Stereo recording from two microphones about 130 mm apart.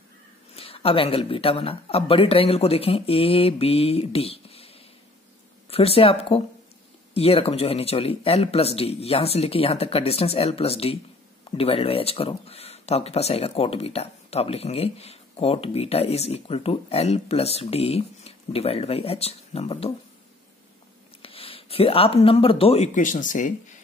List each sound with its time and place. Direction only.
0.6 s speech: 45° left (ahead or behind)
21.2 s speech: 45° left (ahead or behind)
22.9 s speech: 80° left